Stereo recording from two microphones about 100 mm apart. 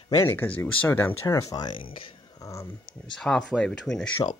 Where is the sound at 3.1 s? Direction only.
5° left (ahead or behind).